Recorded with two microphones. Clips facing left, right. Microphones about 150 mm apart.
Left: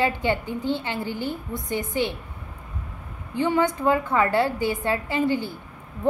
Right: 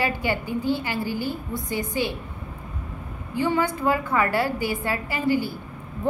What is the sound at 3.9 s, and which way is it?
Speech, 5° right (ahead or behind).